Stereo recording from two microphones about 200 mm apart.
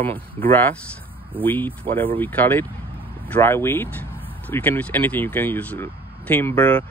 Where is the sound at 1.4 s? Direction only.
10° left (ahead or behind).